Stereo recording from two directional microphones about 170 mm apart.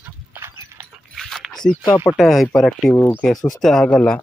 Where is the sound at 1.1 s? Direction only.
Centre (ahead or behind).